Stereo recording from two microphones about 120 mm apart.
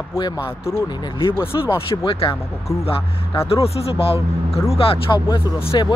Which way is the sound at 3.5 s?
55° left (ahead or behind).